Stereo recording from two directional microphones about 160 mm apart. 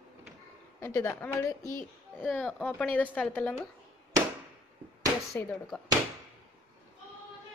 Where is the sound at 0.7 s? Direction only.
15° left (ahead or behind).